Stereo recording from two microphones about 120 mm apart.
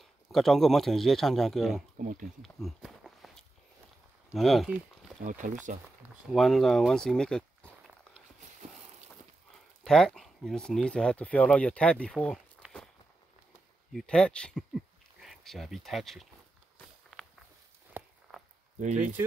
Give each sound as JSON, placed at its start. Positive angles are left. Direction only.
{"t": 0.0, "sound": "speech", "side_deg": 0}
{"t": 2.0, "sound": "speech", "side_deg": -90}
{"t": 2.4, "sound": "walk", "side_deg": 0}
{"t": 4.3, "sound": "speech", "side_deg": 0}
{"t": 5.2, "sound": "speech", "side_deg": -90}
{"t": 6.2, "sound": "speech", "side_deg": 0}
{"t": 9.8, "sound": "speech", "side_deg": 5}
{"t": 12.6, "sound": "walk", "side_deg": -10}
{"t": 13.9, "sound": "speech", "side_deg": 5}
{"t": 17.1, "sound": "walk", "side_deg": 5}
{"t": 17.9, "sound": "a sound", "side_deg": -10}